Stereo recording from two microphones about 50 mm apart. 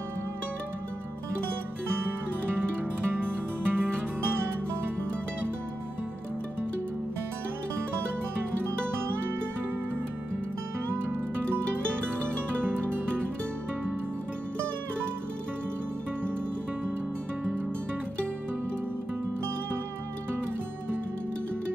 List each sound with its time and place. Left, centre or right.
2.5 s music: right
10.9 s music: right